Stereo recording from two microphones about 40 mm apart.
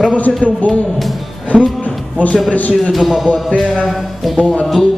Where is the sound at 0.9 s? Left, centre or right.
Centre.